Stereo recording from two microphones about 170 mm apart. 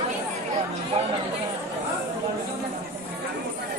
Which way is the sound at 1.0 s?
35° right (ahead or behind).